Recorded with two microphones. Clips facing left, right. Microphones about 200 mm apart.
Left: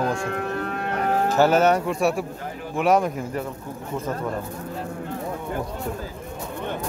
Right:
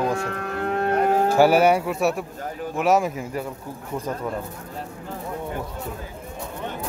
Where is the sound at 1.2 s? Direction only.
10° right (ahead or behind).